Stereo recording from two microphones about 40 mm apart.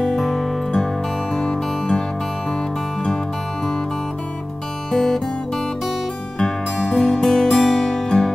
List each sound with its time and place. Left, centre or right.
0.0 s music: centre
1.3 s music: centre
4.9 s guitar: centre
6.8 s music: centre